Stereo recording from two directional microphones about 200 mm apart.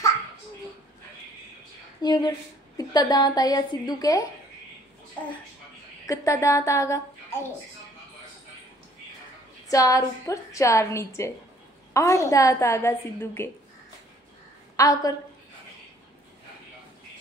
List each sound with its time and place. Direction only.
2.0 s a woman's voice: 20° left (ahead or behind)
6.0 s a woman's voice: 15° left (ahead or behind)
9.7 s a woman's voice: 15° left (ahead or behind)
14.8 s a woman's voice: 15° left (ahead or behind)